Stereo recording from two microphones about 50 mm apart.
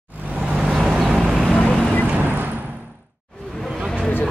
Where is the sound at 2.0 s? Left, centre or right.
Right.